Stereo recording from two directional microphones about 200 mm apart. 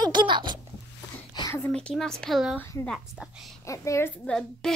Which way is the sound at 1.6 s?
5° left (ahead or behind).